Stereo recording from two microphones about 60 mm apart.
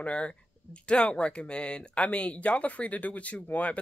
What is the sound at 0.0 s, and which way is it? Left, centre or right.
Speech, centre.